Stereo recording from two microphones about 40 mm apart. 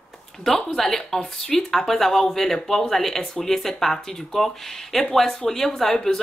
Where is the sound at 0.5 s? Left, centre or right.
Centre.